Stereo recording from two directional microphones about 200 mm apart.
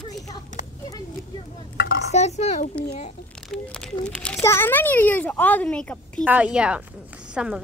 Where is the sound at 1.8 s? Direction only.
60° left (ahead or behind).